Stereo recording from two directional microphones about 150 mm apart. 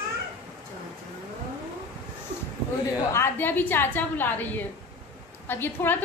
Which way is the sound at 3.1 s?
15° left (ahead or behind).